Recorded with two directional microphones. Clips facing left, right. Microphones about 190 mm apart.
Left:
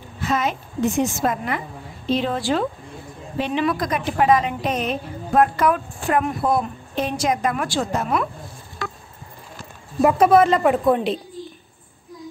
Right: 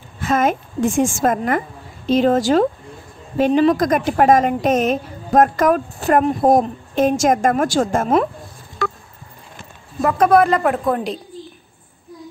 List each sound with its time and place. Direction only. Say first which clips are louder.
0.2 s a woman's voice: right 5 dB; 50° right (ahead or behind)
10.0 s speech: right 1 dB; 5° left (ahead or behind)